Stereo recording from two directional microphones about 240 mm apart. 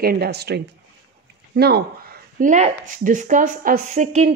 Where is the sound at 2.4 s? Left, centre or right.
Right.